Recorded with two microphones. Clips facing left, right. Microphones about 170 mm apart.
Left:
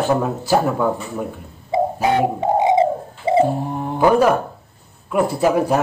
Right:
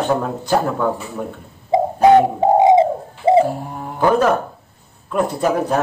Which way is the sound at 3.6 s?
25° left (ahead or behind).